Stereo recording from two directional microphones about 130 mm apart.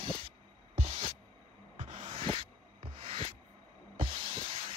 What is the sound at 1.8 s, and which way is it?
Music, 75° right (ahead or behind).